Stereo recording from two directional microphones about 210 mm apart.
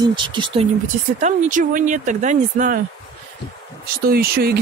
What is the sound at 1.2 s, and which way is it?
Speech, 40° right (ahead or behind).